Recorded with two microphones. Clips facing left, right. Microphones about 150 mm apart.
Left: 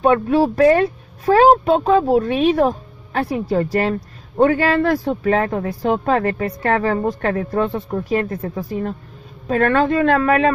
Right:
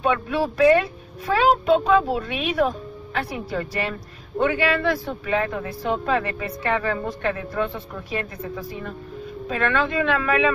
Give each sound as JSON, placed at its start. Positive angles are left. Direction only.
{"t": 0.0, "sound": "speech", "side_deg": 40}